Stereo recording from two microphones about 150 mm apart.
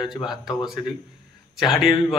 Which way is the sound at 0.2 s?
Centre (ahead or behind).